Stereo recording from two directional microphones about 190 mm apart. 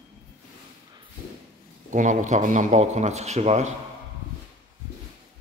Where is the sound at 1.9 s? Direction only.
40° right (ahead or behind).